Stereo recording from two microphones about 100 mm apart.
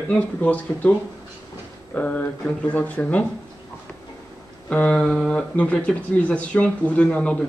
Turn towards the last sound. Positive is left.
turn(degrees=15)  # may be behind; listen again after turning